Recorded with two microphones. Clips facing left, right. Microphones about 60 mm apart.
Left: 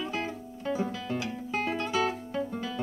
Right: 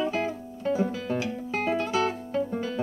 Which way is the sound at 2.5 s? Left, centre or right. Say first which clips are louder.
Right 4 dB; centre.